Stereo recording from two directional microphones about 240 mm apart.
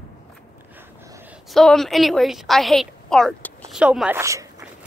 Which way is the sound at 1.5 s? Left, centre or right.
Centre.